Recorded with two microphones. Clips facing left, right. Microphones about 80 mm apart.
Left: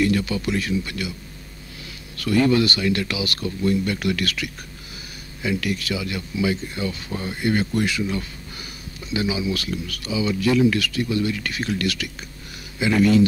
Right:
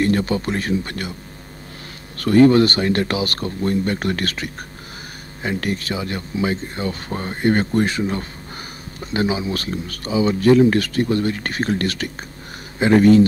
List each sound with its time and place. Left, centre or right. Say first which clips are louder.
0.0 s speech: right 2 dB; right
2.1 s speech: right 6 dB; right